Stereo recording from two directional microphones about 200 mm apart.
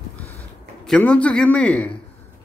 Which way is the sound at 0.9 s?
5° left (ahead or behind).